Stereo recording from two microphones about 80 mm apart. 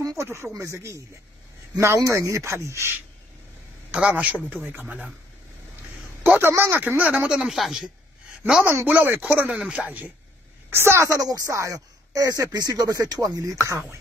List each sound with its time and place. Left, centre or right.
0.0 s speech: right
3.9 s a man's voice: centre
6.2 s speech: right
7.2 s speech: centre
7.8 s a sound: centre
8.6 s speech: right
10.7 s a woman's voice: right